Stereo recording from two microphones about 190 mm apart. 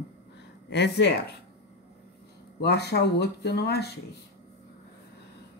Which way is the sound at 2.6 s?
60° left (ahead or behind).